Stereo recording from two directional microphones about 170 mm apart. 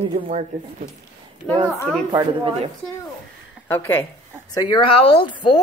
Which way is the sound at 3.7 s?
10° left (ahead or behind).